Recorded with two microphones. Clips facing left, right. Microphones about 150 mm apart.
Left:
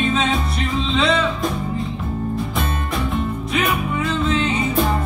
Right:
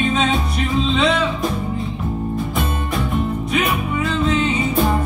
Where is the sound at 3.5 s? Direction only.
Centre (ahead or behind).